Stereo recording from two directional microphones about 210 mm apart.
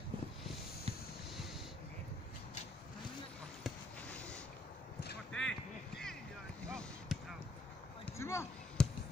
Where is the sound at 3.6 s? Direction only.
5° left (ahead or behind).